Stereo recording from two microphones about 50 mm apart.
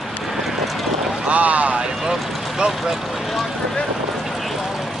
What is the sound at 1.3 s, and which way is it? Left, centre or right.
Boat, right.